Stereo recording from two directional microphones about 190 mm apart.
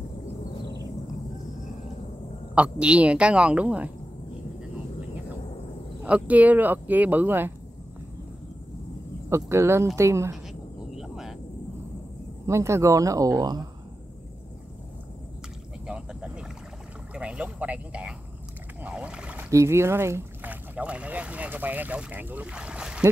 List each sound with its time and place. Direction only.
2.5 s speech: 5° right (ahead or behind)
6.0 s speech: 5° right (ahead or behind)
9.3 s speech: 15° right (ahead or behind)
10.9 s a sound: centre (ahead or behind)
12.4 s speech: 15° right (ahead or behind)
15.9 s cricket: 5° right (ahead or behind)
17.1 s speech: 5° right (ahead or behind)
18.8 s rowboat: 5° right (ahead or behind)